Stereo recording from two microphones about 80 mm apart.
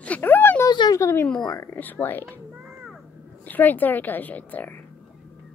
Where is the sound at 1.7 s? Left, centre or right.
Left.